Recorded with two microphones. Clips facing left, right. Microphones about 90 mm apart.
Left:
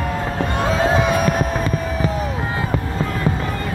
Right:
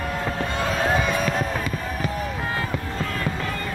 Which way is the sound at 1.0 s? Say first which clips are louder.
Left 6 dB; 60° left (ahead or behind).